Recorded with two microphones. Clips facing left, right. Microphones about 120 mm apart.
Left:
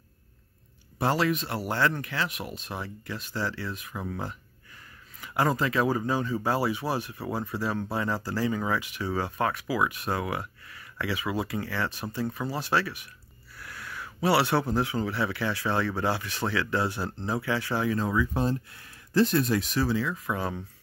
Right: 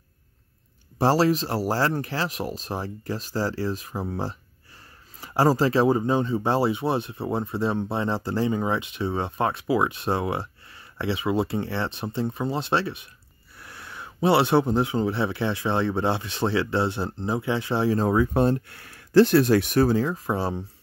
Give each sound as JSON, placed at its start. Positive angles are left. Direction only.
{"t": 0.9, "sound": "speech", "side_deg": -35}